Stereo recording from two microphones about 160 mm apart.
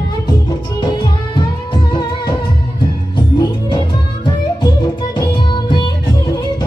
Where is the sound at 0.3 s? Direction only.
30° left (ahead or behind).